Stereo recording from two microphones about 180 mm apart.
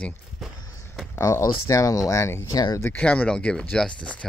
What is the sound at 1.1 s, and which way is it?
Speech, 15° left (ahead or behind).